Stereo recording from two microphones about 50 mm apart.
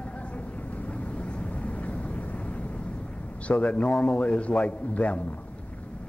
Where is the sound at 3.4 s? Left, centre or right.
Left.